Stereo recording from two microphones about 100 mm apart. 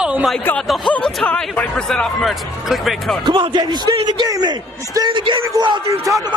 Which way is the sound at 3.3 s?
50° right (ahead or behind).